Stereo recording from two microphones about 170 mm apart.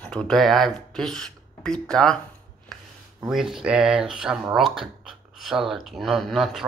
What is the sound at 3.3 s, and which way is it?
Speech, centre (ahead or behind).